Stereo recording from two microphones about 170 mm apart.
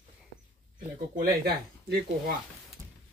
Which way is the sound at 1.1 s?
65° right (ahead or behind).